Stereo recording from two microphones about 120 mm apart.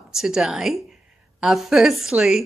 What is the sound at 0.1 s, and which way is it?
Speech, 5° right (ahead or behind).